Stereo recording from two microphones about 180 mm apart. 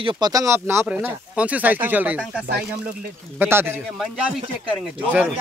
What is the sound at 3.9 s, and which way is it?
Speech, centre (ahead or behind).